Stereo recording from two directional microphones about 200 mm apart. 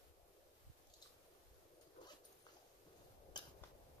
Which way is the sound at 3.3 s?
20° left (ahead or behind).